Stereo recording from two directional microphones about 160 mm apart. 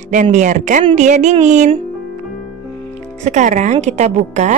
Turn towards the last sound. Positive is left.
turn(degrees=-45)  # may be behind; listen again after turning